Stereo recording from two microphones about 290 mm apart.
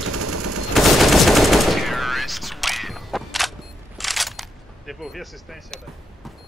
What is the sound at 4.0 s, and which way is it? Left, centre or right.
Single-lens reflex camera, centre.